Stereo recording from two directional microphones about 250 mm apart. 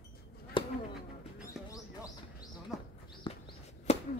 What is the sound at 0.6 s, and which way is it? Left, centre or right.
Insect, centre.